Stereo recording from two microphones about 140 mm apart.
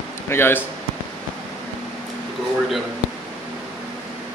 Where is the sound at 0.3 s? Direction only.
15° left (ahead or behind).